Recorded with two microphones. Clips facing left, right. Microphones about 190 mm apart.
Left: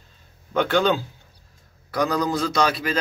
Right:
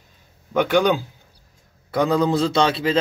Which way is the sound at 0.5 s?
15° right (ahead or behind).